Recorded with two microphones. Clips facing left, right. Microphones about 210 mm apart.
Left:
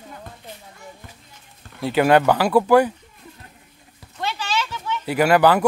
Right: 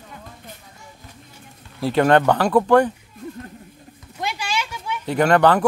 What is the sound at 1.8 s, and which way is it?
Speech, 5° left (ahead or behind).